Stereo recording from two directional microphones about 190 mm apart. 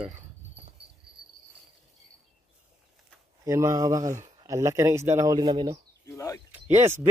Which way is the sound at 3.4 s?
15° right (ahead or behind).